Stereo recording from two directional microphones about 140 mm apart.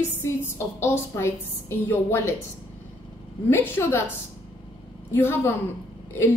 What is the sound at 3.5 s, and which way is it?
Speech, 15° left (ahead or behind).